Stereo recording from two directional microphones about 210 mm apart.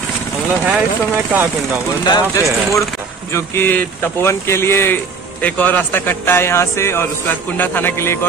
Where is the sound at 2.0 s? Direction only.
20° left (ahead or behind).